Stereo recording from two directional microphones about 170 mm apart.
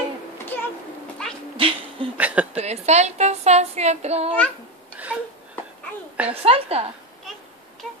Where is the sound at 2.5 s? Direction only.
40° right (ahead or behind).